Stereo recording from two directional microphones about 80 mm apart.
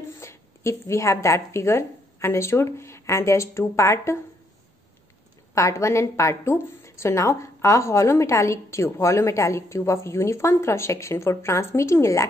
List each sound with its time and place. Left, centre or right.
0.2 s speech: left
5.5 s a woman's voice: left